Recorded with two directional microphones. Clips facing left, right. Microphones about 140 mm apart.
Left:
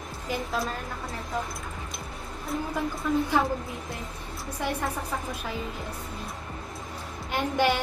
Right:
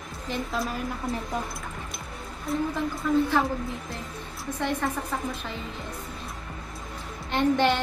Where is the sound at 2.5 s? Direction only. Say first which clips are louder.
Right 4 dB; centre (ahead or behind).